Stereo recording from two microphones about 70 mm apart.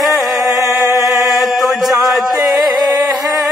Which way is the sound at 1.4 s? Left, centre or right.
Centre.